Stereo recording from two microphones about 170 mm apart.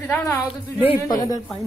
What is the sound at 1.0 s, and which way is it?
Speech, 20° left (ahead or behind).